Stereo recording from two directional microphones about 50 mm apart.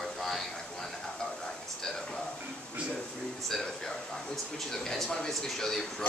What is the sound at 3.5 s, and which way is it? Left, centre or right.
A man's voice, centre.